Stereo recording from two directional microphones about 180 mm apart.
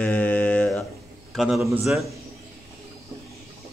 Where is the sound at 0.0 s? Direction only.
10° left (ahead or behind).